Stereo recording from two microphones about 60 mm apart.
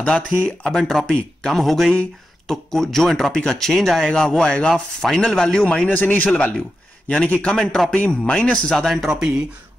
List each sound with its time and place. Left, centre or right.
0.0 s speech: left
0.7 s speech: centre
1.9 s speech: centre
5.9 s speech: left
7.5 s speech: centre
7.9 s speech: centre
8.8 s speech: centre